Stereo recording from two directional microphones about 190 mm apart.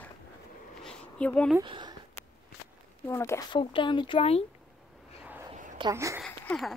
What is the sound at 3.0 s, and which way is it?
Speech, 15° left (ahead or behind).